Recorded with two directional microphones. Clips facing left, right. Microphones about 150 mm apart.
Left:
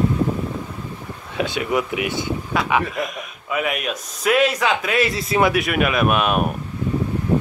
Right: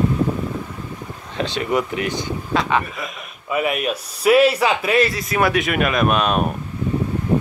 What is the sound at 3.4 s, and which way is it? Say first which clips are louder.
Speech: right 3 dB; centre (ahead or behind).